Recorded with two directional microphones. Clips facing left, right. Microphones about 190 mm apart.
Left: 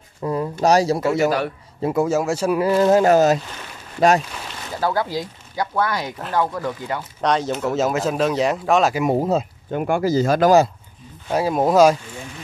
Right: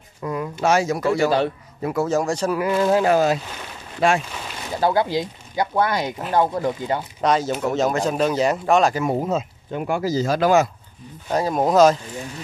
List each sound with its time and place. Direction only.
0.2 s speech: 35° left (ahead or behind)
2.0 s speech: 5° left (ahead or behind)
2.6 s speech: 35° left (ahead or behind)
4.7 s speech: 20° right (ahead or behind)
7.2 s speech: 5° right (ahead or behind)
8.9 s speech: 20° left (ahead or behind)
9.7 s speech: 55° left (ahead or behind)
11.3 s speech: 5° left (ahead or behind)